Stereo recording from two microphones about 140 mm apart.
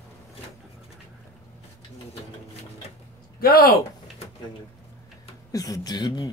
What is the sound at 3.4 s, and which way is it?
Speech, 90° left.